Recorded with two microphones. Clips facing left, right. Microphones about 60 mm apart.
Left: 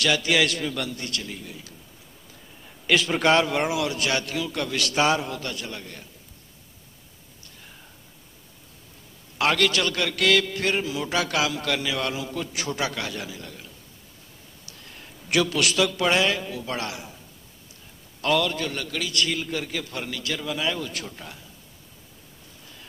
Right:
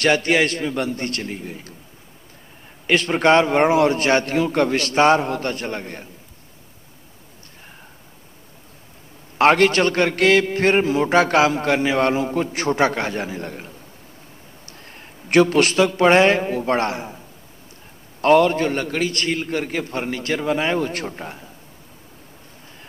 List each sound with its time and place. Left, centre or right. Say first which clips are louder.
0.0 s a man's voice: right 5 dB; right
2.9 s a man's voice: right 4 dB; right
9.4 s a man's voice: right 8 dB; right
18.2 s a man's voice: right 9 dB; right